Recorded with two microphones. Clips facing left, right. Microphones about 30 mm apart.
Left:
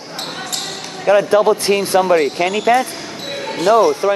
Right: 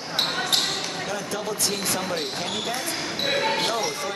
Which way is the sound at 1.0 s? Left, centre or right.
Left.